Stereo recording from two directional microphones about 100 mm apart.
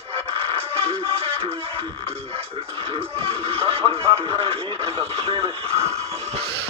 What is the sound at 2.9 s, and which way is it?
Music, 75° right (ahead or behind).